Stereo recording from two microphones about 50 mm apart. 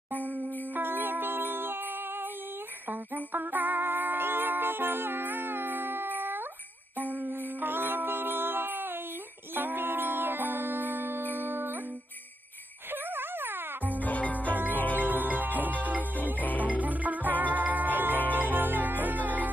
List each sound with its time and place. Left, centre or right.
0.7 s music: right
2.9 s music: right
12.9 s music: right
13.9 s music: left
15.0 s music: right
16.3 s music: left
16.6 s music: right